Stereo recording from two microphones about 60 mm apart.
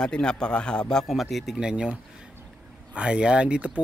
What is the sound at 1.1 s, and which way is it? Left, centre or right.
Speech, centre.